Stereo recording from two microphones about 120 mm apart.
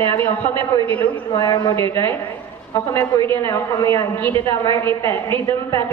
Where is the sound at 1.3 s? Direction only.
30° left (ahead or behind).